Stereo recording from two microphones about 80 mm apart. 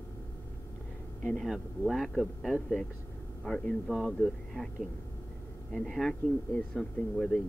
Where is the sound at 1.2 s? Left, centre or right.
Centre.